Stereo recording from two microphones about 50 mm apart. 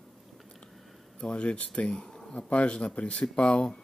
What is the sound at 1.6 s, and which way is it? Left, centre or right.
Speech, left.